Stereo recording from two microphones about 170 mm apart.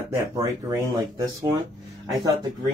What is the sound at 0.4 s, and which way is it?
Speech, 20° right (ahead or behind).